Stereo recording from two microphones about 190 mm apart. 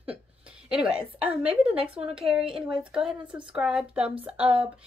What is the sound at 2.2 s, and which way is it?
A woman's voice, 5° right (ahead or behind).